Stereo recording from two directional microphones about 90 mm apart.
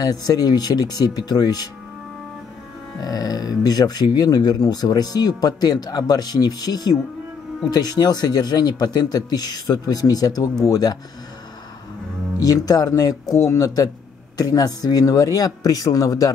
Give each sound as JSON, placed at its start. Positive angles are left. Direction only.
{"t": 0.0, "sound": "speech", "side_deg": 45}
{"t": 3.0, "sound": "speech", "side_deg": 45}
{"t": 12.4, "sound": "speech", "side_deg": 45}